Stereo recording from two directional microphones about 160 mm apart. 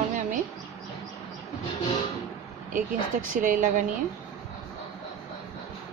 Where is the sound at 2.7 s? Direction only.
55° right (ahead or behind).